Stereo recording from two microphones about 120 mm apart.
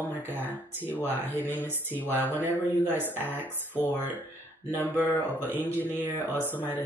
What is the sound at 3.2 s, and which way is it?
Speech, 15° left (ahead or behind).